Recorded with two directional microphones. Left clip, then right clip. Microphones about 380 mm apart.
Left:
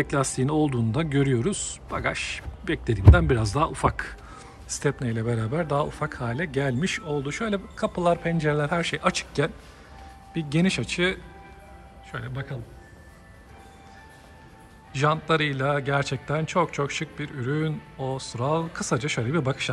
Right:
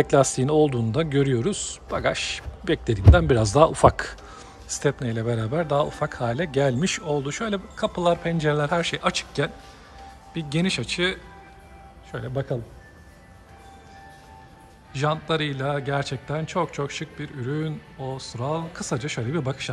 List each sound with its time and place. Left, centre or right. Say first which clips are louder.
0.0 s a man's voice: right 6 dB; centre
14.9 s a man's voice: left 2 dB; centre